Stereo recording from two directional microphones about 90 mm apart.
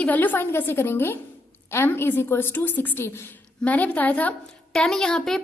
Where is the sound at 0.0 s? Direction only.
20° left (ahead or behind).